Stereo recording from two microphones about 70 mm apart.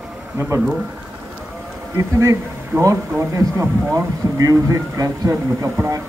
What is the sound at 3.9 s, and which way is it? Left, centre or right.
Speech, right.